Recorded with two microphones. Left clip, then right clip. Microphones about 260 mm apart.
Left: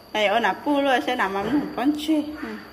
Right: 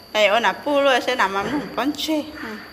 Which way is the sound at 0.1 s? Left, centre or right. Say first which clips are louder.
Right 4 dB; centre.